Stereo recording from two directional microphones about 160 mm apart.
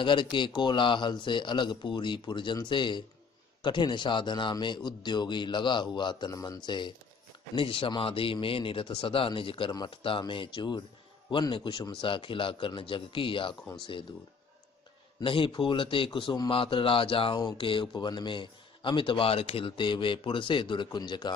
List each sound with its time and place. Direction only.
0.0 s a man's voice: 30° left (ahead or behind)
15.1 s a man's voice: 30° left (ahead or behind)